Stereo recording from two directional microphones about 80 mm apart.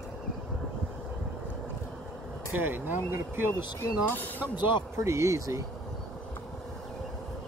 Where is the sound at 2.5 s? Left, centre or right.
Right.